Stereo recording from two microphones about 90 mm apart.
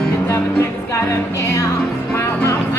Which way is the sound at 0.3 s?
35° left (ahead or behind).